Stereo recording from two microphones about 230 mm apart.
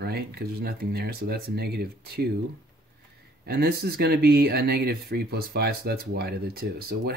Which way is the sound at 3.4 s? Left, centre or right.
Right.